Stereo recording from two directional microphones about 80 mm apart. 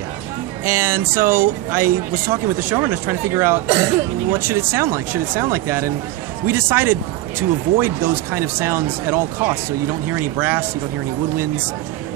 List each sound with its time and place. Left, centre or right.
0.7 s speech: right